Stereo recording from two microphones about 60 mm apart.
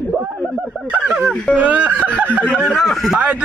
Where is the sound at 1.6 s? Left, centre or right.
Right.